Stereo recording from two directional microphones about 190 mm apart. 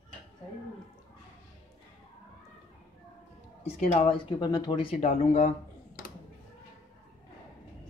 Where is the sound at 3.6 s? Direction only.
35° left (ahead or behind).